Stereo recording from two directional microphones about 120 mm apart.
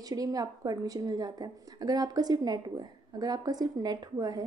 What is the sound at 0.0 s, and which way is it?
A woman's voice, 30° right (ahead or behind).